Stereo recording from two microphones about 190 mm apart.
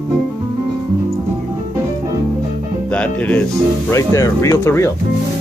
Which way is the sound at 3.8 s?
15° left (ahead or behind).